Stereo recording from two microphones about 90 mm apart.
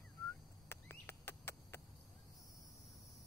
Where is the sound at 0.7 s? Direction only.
25° left (ahead or behind).